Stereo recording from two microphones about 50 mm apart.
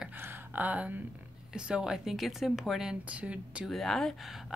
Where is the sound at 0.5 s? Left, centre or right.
Right.